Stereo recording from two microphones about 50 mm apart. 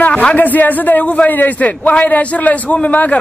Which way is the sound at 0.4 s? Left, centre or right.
Left.